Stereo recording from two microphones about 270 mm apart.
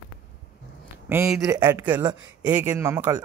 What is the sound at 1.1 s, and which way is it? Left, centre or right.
Speech, centre.